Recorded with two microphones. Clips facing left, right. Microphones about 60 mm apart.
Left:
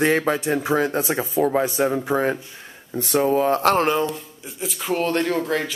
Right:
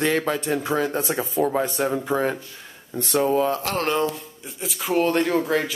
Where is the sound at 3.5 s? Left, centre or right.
Left.